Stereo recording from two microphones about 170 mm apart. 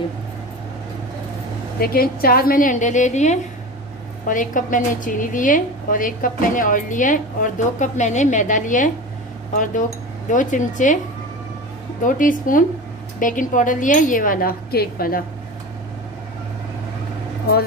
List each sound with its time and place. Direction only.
1.8 s a woman's voice: 60° left (ahead or behind)
12.0 s a woman's voice: 50° left (ahead or behind)